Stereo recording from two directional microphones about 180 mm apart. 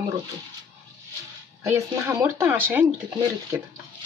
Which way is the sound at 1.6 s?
15° right (ahead or behind).